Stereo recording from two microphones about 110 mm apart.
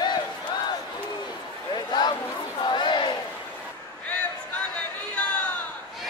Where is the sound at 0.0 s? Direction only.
40° left (ahead or behind).